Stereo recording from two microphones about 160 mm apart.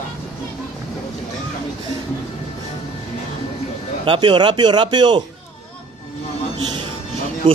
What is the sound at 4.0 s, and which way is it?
A man's voice, 30° right (ahead or behind).